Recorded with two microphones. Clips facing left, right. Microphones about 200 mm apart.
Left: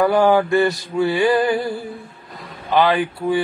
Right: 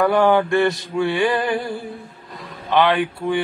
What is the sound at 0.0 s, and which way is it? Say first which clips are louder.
Mantra: left 1 dB; 5° left (ahead or behind).